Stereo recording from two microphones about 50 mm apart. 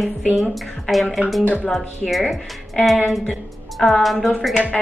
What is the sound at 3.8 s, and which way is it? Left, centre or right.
Speech, centre.